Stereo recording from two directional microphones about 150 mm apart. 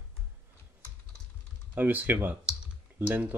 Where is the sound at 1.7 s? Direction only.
10° right (ahead or behind).